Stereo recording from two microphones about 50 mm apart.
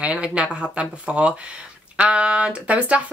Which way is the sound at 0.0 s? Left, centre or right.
Right.